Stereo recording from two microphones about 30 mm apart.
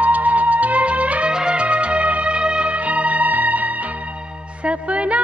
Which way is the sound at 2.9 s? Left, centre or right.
Right.